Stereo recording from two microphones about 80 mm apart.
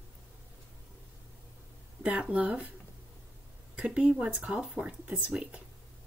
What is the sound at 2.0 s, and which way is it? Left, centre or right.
Speech, centre.